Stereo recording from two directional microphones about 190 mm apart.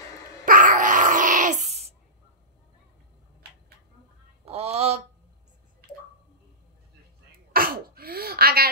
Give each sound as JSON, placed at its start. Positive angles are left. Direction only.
{"t": 0.5, "sound": "dog", "side_deg": -45}
{"t": 4.5, "sound": "a sound", "side_deg": -35}
{"t": 7.3, "sound": "sneeze", "side_deg": -50}